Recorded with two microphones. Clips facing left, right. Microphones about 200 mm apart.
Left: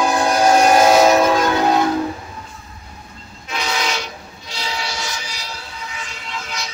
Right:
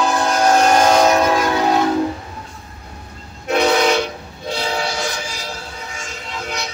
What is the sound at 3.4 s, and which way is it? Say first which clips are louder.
Train: right 9 dB; 60° right (ahead or behind).